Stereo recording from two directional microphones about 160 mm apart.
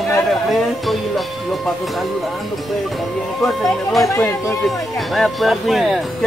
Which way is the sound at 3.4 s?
Centre (ahead or behind).